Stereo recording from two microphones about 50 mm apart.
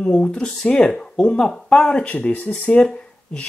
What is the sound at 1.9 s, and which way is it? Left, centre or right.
Speech, left.